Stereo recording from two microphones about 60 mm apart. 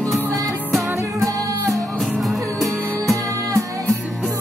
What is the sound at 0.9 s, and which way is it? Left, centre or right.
Music, right.